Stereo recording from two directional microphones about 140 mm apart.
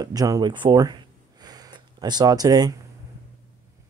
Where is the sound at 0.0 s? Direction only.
25° right (ahead or behind).